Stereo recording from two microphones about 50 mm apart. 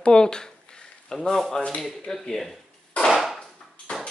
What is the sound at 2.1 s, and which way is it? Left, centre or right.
Speech, centre.